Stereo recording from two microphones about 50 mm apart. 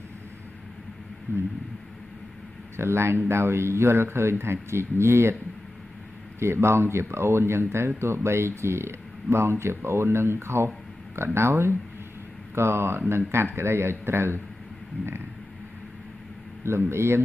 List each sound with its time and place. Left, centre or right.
1.3 s speech: right
2.8 s speech: right
6.4 s speech: right
16.6 s speech: right